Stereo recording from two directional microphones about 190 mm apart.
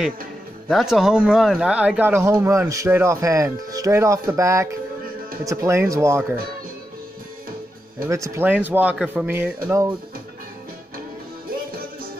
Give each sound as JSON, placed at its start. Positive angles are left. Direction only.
{"t": 0.7, "sound": "speech", "side_deg": 0}
{"t": 8.1, "sound": "speech", "side_deg": -15}